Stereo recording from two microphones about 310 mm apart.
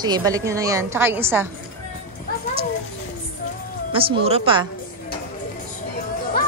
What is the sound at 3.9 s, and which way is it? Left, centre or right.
Speech, centre.